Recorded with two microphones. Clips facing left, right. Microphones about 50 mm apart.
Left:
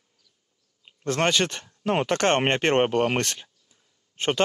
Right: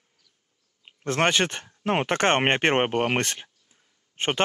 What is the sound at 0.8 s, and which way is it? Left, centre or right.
Speech, right.